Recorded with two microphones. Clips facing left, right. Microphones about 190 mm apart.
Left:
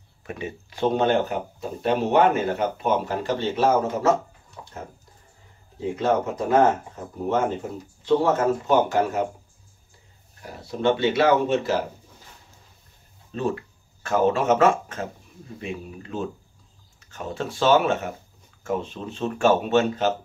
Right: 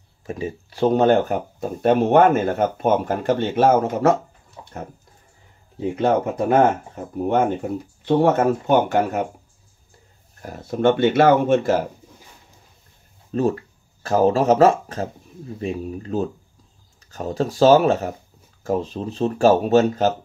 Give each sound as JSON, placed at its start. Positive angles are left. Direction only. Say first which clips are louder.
{"t": 0.3, "sound": "speech", "louder": "right 5 dB", "side_deg": -35}
{"t": 5.9, "sound": "speech", "louder": "right 4 dB", "side_deg": -60}
{"t": 8.0, "sound": "speech", "louder": "right 3 dB", "side_deg": -60}
{"t": 10.4, "sound": "speech", "louder": "right 5 dB", "side_deg": -50}
{"t": 13.3, "sound": "speech", "louder": "right 6 dB", "side_deg": -40}